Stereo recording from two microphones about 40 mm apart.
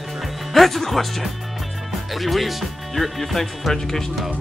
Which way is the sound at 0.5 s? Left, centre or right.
Centre.